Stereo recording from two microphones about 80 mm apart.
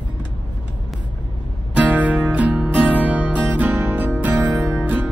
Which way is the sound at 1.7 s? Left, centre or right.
Centre.